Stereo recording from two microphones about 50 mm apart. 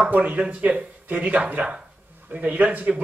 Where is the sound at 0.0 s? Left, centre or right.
Right.